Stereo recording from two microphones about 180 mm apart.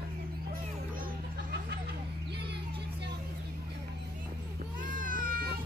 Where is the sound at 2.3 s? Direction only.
65° right (ahead or behind).